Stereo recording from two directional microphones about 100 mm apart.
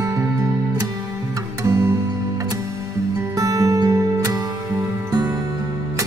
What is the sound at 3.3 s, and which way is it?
Music, 35° right (ahead or behind).